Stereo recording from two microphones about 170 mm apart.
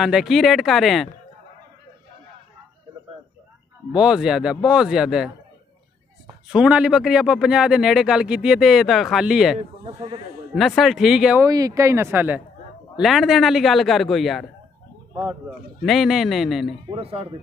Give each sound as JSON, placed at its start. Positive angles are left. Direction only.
{"t": 0.0, "sound": "speech", "side_deg": 0}
{"t": 3.9, "sound": "speech", "side_deg": -5}
{"t": 6.5, "sound": "speech", "side_deg": -5}
{"t": 9.6, "sound": "speech", "side_deg": -35}
{"t": 10.5, "sound": "speech", "side_deg": 0}
{"t": 11.4, "sound": "speech", "side_deg": -20}
{"t": 12.9, "sound": "speech", "side_deg": 0}
{"t": 15.8, "sound": "speech", "side_deg": 0}
{"t": 16.9, "sound": "speech", "side_deg": -35}